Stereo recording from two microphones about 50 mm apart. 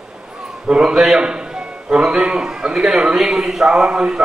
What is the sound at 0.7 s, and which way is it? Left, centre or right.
A man's voice, centre.